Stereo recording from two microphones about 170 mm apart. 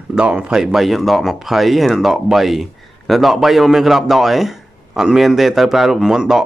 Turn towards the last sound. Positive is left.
turn(degrees=-5)  # may be behind; listen again after turning